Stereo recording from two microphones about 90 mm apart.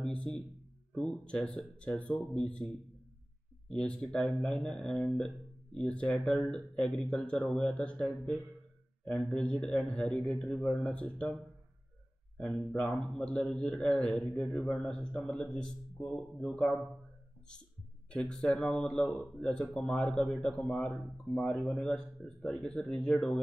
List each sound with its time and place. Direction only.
0.0 s a man's voice: 10° left (ahead or behind)
12.4 s a man's voice: 10° left (ahead or behind)
18.1 s a man's voice: 10° left (ahead or behind)